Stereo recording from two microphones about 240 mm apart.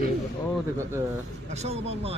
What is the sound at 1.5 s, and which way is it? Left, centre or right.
Speech, right.